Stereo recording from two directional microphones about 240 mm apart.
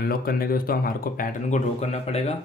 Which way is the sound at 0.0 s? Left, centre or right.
Left.